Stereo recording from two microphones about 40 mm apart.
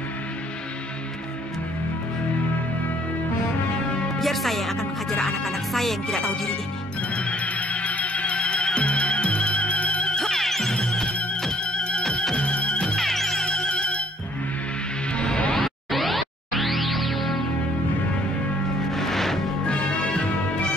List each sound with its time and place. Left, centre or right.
4.2 s speech: centre
7.2 s music: left
10.1 s music: centre
10.8 s music: centre
12.8 s music: centre
13.5 s music: left
15.1 s music: left
15.6 s music: centre
18.9 s music: centre
19.6 s music: left